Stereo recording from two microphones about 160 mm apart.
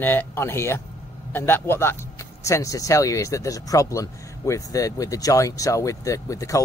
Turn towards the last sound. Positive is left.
turn(degrees=20)  # may be behind; listen again after turning